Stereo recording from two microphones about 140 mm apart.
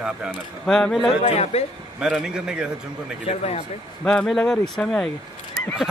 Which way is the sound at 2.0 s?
5° right (ahead or behind).